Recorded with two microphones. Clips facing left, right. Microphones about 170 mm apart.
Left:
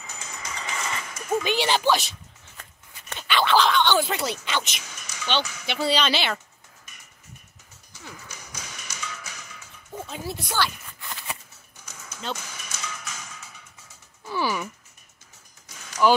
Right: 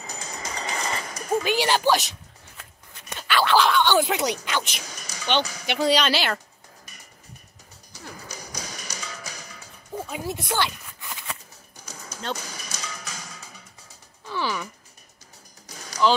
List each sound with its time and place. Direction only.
0.0 s music: 35° right (ahead or behind)
1.4 s speech: 10° right (ahead or behind)
3.1 s a sound: 5° right (ahead or behind)
4.8 s a sound: 35° right (ahead or behind)
5.4 s speech: 35° right (ahead or behind)
5.7 s speech: 15° right (ahead or behind)
7.9 s music: 35° right (ahead or behind)
9.9 s speech: 10° right (ahead or behind)
11.7 s music: 35° right (ahead or behind)
14.2 s a sound: 10° left (ahead or behind)
15.7 s music: 35° right (ahead or behind)